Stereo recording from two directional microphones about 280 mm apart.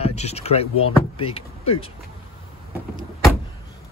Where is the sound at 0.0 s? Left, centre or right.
Left.